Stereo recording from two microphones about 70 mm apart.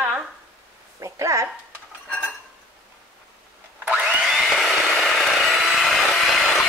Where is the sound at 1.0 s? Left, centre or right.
Right.